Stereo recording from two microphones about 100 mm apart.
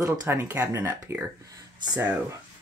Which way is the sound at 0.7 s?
30° right (ahead or behind).